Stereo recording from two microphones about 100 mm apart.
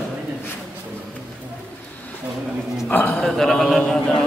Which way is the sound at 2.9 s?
10° left (ahead or behind).